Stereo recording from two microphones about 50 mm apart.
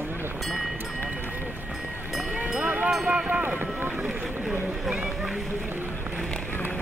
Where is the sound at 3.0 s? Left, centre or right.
Right.